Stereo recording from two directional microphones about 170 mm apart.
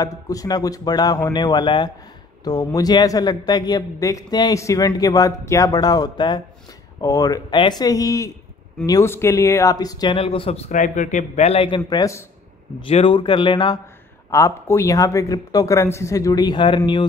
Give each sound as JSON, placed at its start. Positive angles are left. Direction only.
{"t": 0.0, "sound": "speech", "side_deg": 20}
{"t": 12.8, "sound": "speech", "side_deg": 30}
{"t": 14.3, "sound": "speech", "side_deg": 15}